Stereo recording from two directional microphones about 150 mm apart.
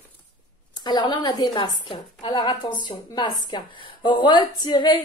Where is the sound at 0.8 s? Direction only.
30° left (ahead or behind).